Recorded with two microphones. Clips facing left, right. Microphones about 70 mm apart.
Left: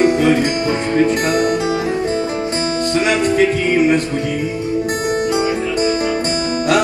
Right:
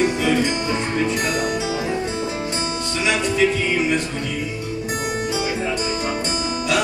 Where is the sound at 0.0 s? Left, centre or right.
Left.